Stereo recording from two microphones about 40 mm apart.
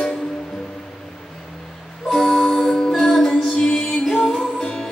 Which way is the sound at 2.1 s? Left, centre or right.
Centre.